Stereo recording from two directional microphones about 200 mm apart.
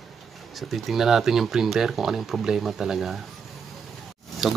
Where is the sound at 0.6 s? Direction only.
Centre (ahead or behind).